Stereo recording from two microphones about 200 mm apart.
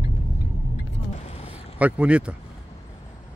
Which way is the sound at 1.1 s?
30° left (ahead or behind).